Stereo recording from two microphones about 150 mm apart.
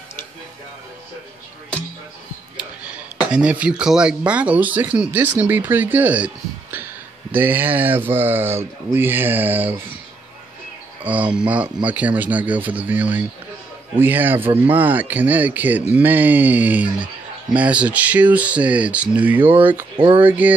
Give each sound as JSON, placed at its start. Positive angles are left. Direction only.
{"t": 3.3, "sound": "speech", "side_deg": -5}
{"t": 11.1, "sound": "speech", "side_deg": -10}
{"t": 20.0, "sound": "speech", "side_deg": -35}
{"t": 20.2, "sound": "speech", "side_deg": -10}